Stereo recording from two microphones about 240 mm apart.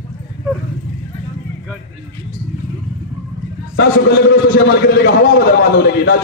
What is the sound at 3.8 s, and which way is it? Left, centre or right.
A man's voice, left.